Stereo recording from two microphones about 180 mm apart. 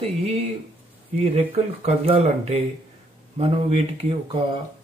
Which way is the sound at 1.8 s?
35° right (ahead or behind).